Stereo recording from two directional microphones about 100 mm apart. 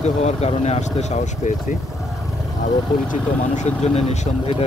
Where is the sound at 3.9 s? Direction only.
90° left.